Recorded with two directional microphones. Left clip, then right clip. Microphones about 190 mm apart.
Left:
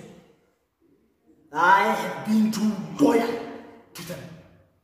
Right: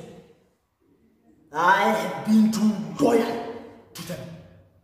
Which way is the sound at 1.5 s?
5° left (ahead or behind).